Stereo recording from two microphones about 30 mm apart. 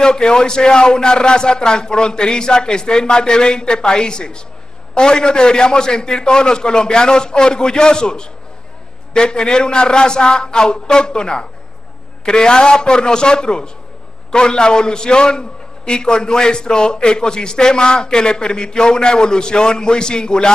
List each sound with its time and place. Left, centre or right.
0.0 s a man's voice: left